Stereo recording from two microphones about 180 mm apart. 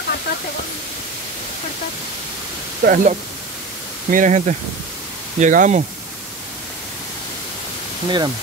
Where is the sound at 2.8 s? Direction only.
45° right (ahead or behind).